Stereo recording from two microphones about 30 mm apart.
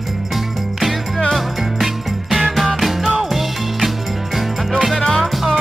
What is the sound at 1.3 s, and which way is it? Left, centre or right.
Music, centre.